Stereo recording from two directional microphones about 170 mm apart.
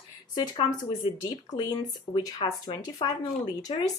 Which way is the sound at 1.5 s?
25° left (ahead or behind).